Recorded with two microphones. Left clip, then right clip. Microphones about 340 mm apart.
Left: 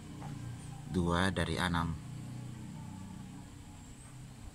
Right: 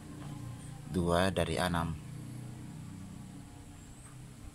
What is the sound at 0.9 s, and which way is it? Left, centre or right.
Speech, centre.